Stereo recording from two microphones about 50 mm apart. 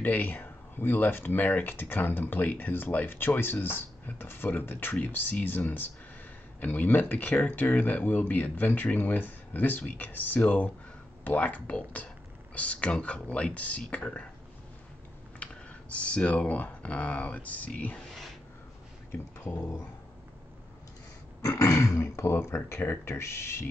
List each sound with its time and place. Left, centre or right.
0.0 s speech: left
15.3 s computer keyboard: left
16.4 s speech: left
21.4 s a sound: left
22.0 s speech: left